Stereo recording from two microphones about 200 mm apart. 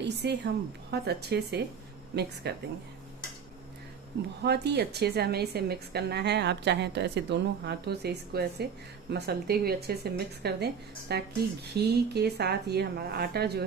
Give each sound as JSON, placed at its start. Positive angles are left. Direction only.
{"t": 0.0, "sound": "a woman's voice", "side_deg": -60}
{"t": 4.4, "sound": "a woman's voice", "side_deg": -55}